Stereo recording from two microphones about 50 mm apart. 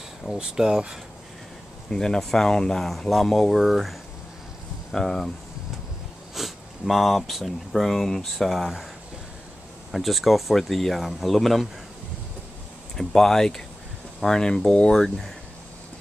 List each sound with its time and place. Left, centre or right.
0.4 s speech: centre
1.9 s speech: centre
4.9 s speech: centre
6.3 s speech: centre
9.8 s speech: centre
12.9 s speech: centre